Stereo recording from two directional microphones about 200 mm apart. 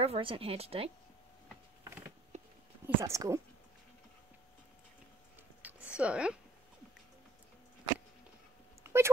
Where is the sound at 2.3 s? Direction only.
35° right (ahead or behind).